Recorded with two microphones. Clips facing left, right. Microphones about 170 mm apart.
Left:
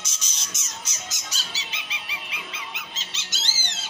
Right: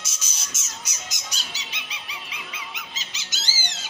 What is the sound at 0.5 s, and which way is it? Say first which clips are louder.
Squawk: left 1 dB; 15° right (ahead or behind).